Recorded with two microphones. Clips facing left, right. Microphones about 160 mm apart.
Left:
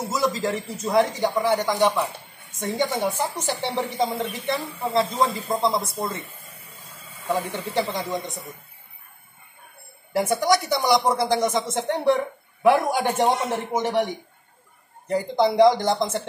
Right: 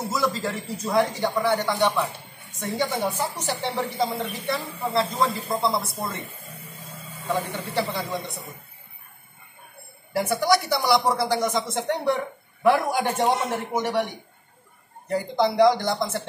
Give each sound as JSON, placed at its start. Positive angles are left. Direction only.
{"t": 0.1, "sound": "a man's voice", "side_deg": 15}
{"t": 7.2, "sound": "speech", "side_deg": 20}
{"t": 10.1, "sound": "speech", "side_deg": 20}
{"t": 15.0, "sound": "speech", "side_deg": 20}